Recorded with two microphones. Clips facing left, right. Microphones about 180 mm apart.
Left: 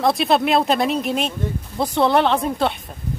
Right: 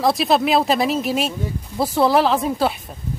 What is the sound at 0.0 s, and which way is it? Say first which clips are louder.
Speech: even; centre (ahead or behind).